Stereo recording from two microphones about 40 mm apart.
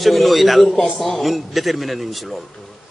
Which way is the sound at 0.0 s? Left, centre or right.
Centre.